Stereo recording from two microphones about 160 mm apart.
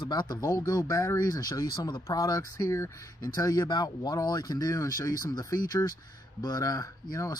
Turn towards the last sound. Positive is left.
turn(degrees=20)  # may be behind; listen again after turning